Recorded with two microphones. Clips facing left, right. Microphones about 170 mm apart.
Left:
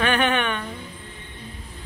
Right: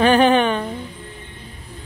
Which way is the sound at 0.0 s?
35° right (ahead or behind).